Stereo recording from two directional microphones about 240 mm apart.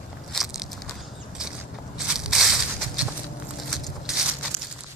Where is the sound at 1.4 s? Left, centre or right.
Centre.